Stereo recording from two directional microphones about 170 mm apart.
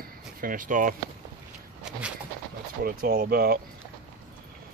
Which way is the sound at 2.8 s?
65° right (ahead or behind).